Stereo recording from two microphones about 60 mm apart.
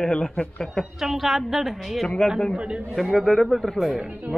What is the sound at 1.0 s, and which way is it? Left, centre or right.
A woman's voice, centre.